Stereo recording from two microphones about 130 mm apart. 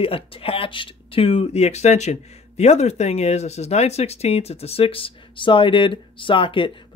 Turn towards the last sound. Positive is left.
turn(degrees=40)  # may be behind; listen again after turning